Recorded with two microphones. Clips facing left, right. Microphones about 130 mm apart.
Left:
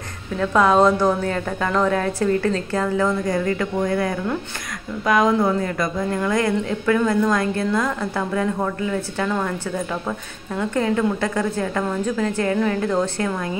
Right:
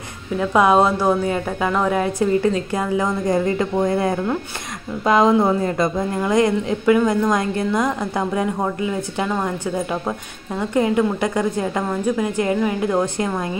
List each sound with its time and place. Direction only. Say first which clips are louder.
0.4 s a woman's voice: right 1 dB; 15° right (ahead or behind)